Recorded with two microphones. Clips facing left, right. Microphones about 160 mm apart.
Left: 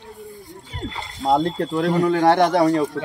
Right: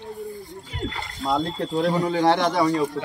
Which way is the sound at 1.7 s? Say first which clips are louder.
Left 3 dB; 70° left (ahead or behind).